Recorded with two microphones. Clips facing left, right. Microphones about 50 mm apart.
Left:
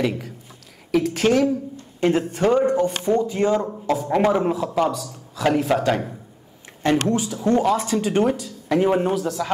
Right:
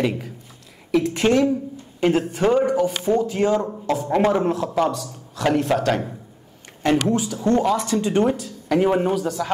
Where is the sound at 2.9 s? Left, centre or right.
Left.